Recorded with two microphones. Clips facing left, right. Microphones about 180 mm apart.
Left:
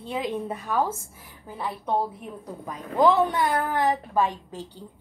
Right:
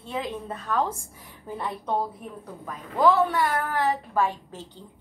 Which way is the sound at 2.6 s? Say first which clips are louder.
Left 1 dB; 20° left (ahead or behind).